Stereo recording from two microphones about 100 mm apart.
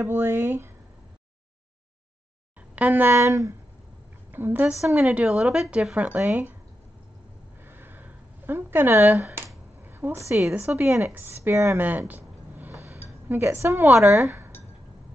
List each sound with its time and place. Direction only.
0.0 s speech: 25° right (ahead or behind)
2.7 s speech: 15° right (ahead or behind)
4.3 s speech: 20° right (ahead or behind)
5.0 s a woman's voice: 5° right (ahead or behind)
7.6 s a sound: 20° right (ahead or behind)
9.8 s a woman's voice: 20° right (ahead or behind)
12.1 s a sound: 20° right (ahead or behind)
13.3 s speech: 25° right (ahead or behind)
13.9 s a woman's voice: 5° right (ahead or behind)
14.2 s speech: 20° right (ahead or behind)